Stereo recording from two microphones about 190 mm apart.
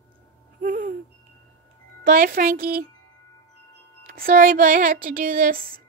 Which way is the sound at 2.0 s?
45° right (ahead or behind).